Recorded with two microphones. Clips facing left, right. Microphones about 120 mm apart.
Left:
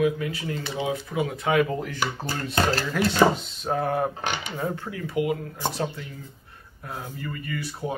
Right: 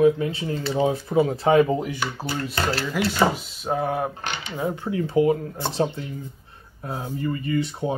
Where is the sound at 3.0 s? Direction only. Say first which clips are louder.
Left 2 dB; 5° right (ahead or behind).